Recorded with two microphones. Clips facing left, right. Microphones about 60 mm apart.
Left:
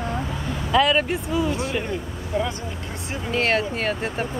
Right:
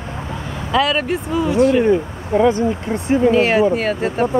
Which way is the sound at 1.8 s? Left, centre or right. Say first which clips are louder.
Right 13 dB; right.